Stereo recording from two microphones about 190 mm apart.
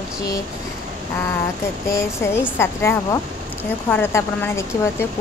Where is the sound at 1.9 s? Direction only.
15° left (ahead or behind).